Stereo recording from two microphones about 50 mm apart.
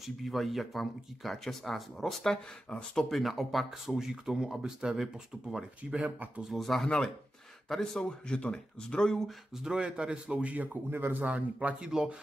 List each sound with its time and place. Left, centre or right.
0.0 s speech: centre
3.1 s speech: centre
6.5 s speech: centre
9.6 s a man's voice: centre; by 10.8 s right
10.9 s speech: right
11.2 s a man's voice: right
11.9 s speech: centre